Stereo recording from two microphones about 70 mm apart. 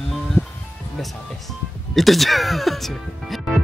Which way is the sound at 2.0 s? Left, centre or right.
Centre.